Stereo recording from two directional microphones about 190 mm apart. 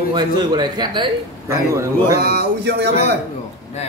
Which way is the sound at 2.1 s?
60° right (ahead or behind).